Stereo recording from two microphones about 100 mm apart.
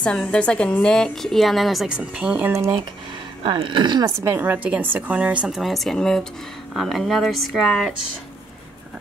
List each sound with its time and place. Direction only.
0.0 s a woman's voice: 10° left (ahead or behind); by 2.5 s 15° right (ahead or behind)
3.4 s speech: 55° right (ahead or behind)
4.2 s a woman's voice: 25° right (ahead or behind)
5.6 s a woman's voice: centre (ahead or behind)